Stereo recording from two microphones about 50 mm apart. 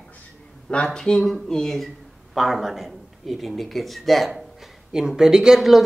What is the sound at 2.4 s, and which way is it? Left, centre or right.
Speech, centre.